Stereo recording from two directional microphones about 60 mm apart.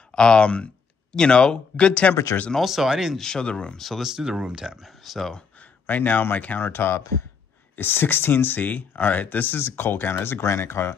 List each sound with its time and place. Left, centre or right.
0.1 s speech: centre
2.5 s speech: centre
3.2 s speech: centre
3.8 s speech: centre
4.1 s speech: centre
5.6 s speech: left
10.4 s speech: left